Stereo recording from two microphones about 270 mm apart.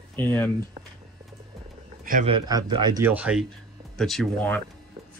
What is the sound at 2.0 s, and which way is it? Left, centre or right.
Speech, right.